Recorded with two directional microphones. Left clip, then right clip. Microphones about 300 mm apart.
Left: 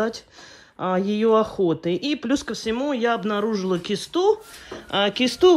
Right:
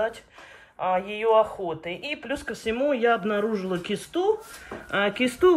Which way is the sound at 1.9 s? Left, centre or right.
Centre.